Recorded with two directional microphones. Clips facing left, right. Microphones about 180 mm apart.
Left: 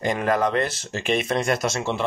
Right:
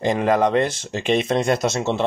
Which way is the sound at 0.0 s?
20° right (ahead or behind).